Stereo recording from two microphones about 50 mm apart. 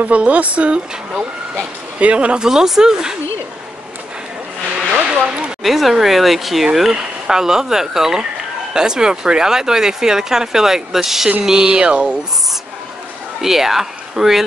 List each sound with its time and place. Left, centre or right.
0.0 s speech: right; by 3.2 s centre
5.0 s a sound: right
5.6 s speech: centre; by 12.2 s right
13.4 s speech: centre